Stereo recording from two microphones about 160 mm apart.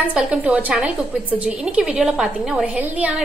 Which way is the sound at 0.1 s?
5° right (ahead or behind).